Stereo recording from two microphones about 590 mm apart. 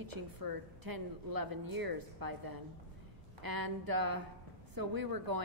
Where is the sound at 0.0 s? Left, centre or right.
Right.